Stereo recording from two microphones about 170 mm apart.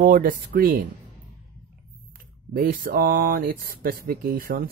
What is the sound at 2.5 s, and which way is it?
Speech, 55° right (ahead or behind).